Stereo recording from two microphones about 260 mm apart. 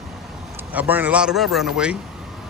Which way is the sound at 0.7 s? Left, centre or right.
Centre.